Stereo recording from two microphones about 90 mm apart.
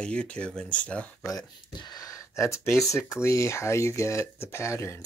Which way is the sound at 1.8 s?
45° left (ahead or behind).